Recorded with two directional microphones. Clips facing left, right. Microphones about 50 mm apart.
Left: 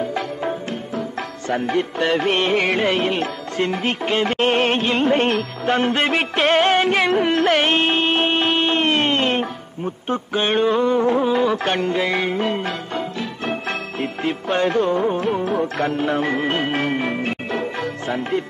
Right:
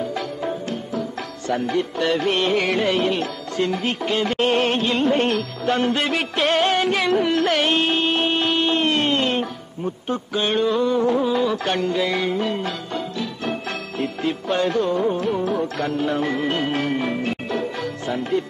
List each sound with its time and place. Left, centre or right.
0.1 s music: left